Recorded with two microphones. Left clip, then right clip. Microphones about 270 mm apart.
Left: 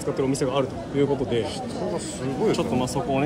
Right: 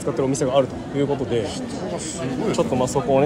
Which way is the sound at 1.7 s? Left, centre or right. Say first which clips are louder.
Right 1 dB; centre.